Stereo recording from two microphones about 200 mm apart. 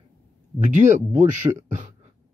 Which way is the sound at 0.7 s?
35° right (ahead or behind).